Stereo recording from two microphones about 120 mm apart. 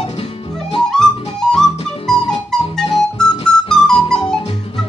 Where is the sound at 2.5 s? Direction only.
5° left (ahead or behind).